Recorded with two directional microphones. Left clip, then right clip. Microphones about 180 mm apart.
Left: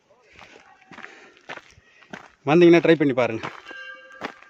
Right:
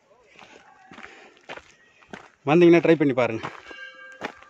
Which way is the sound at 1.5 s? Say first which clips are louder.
Left 2 dB; 30° left (ahead or behind).